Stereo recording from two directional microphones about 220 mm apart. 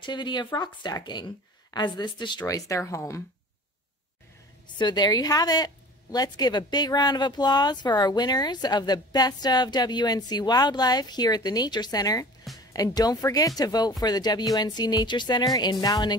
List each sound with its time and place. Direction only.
0.0 s speech: 20° left (ahead or behind)
4.7 s speech: 20° left (ahead or behind)